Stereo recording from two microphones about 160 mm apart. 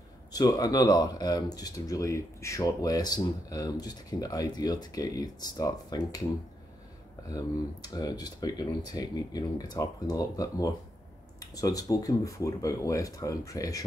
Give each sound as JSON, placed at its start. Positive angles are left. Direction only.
{"t": 0.3, "sound": "speech", "side_deg": 25}
{"t": 7.2, "sound": "speech", "side_deg": 25}